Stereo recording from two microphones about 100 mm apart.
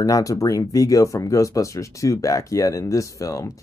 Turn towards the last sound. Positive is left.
turn(degrees=35)  # may be behind; listen again after turning